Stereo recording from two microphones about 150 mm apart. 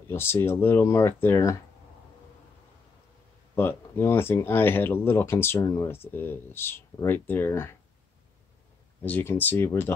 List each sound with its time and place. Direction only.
0.1 s speech: 15° left (ahead or behind)
3.5 s speech: 15° left (ahead or behind)
9.0 s speech: 15° left (ahead or behind)